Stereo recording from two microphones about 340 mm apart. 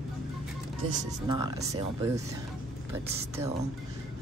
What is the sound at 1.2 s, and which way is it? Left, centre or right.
Speech, centre.